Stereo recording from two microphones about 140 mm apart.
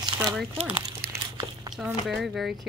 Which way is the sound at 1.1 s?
25° right (ahead or behind).